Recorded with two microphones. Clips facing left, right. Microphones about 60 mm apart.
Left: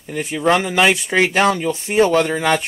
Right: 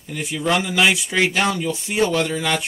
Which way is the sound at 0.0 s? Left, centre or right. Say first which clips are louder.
Left 5 dB; left.